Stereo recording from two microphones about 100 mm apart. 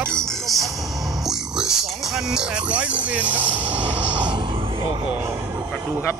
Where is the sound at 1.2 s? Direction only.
5° right (ahead or behind).